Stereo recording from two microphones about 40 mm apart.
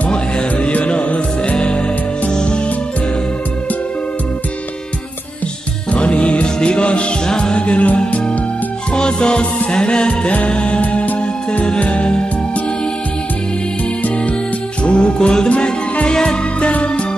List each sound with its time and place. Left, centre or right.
0.1 s music: left
5.9 s music: left
8.9 s music: left
14.8 s music: left